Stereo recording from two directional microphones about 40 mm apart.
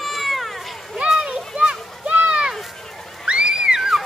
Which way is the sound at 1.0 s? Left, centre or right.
Right.